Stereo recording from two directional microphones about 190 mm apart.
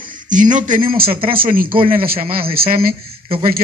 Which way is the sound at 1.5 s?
45° right (ahead or behind).